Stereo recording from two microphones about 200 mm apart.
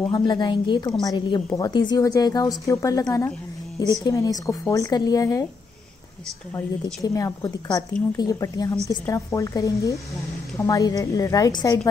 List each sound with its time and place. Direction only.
0.0 s a woman's voice: 20° left (ahead or behind)
6.5 s a woman's voice: 15° left (ahead or behind)